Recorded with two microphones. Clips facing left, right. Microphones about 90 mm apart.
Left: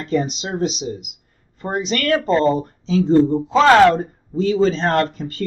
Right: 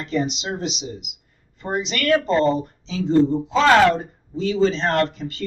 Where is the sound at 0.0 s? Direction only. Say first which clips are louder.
Left 3 dB; 40° left (ahead or behind).